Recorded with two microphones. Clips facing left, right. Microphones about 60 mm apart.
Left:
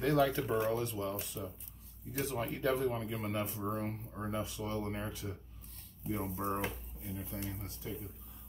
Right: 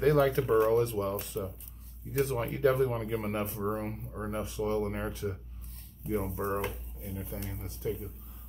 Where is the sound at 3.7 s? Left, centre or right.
Right.